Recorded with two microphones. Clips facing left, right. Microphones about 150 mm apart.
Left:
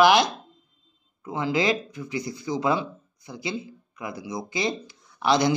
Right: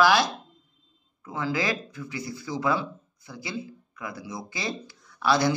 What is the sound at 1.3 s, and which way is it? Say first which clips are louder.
Speech: left 4 dB; 20° left (ahead or behind).